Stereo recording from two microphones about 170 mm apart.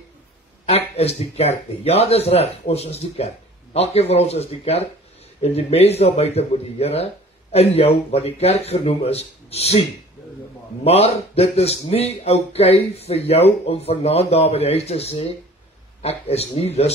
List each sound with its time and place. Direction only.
0.7 s speech: 35° left (ahead or behind)